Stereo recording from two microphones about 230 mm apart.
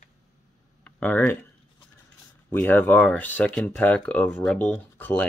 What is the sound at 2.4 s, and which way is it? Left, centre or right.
Speech, centre.